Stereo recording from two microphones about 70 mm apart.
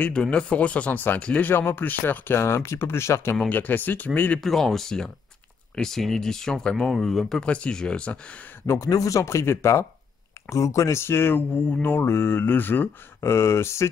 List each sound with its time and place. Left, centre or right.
0.1 s speech: centre
1.5 s speech: left
3.4 s speech: left
4.4 s speech: centre
7.4 s speech: centre
8.6 s speech: left
8.9 s speech: left
13.2 s speech: left